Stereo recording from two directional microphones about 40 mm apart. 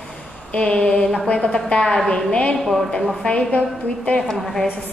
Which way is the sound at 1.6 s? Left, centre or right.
Left.